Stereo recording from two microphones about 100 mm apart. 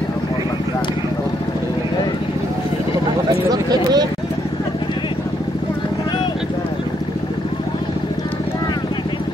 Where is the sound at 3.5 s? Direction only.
40° right (ahead or behind).